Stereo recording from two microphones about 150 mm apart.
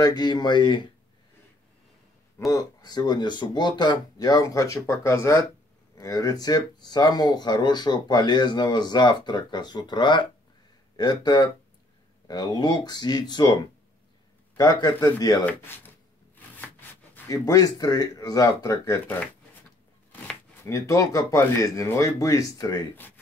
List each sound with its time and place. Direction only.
0.0 s speech: 30° left (ahead or behind)
2.3 s speech: 20° left (ahead or behind)
14.6 s speech: 30° left (ahead or behind)
15.4 s speech: 15° left (ahead or behind)
16.3 s a sound: 10° left (ahead or behind)
17.5 s speech: 25° left (ahead or behind)
20.6 s speech: 20° left (ahead or behind)